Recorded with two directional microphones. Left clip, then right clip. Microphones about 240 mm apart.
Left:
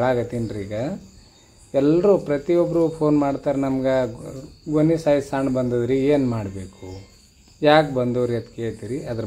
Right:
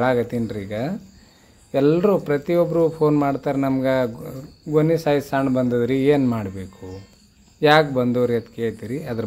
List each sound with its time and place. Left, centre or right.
0.0 s speech: right